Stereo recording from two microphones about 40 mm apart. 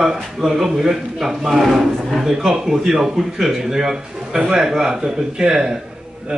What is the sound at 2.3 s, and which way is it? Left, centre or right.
A man's voice, centre.